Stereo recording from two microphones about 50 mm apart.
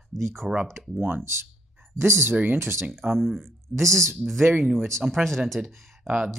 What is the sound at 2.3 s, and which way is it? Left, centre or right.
Speech, right.